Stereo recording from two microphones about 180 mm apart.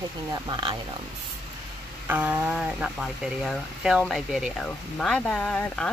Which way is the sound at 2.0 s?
10° right (ahead or behind).